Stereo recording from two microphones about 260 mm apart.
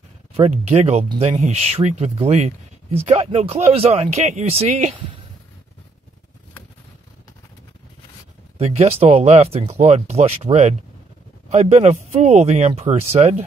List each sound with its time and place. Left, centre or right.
0.3 s speech: right
8.5 s speech: right